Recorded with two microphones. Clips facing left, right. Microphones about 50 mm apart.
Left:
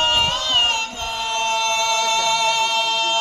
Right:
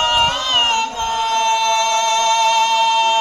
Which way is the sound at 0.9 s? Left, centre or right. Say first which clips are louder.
Right 7 dB; right.